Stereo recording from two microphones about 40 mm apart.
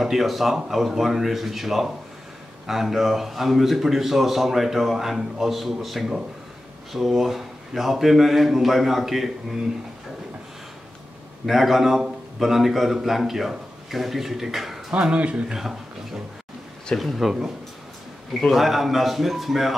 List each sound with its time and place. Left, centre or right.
0.0 s a man's voice: centre
11.4 s speech: centre
15.1 s speech: right
15.5 s a sound: centre
17.0 s a man's voice: centre
18.5 s a man's voice: centre